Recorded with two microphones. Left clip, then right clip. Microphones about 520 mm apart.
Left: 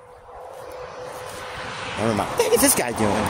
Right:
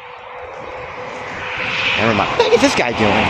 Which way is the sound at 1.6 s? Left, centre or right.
Left.